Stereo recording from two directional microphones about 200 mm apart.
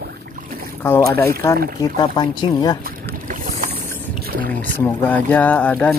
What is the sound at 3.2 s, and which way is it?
Boat, 40° right (ahead or behind).